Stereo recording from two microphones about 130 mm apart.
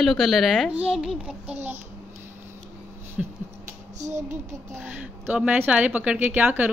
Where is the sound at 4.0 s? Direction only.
65° right (ahead or behind).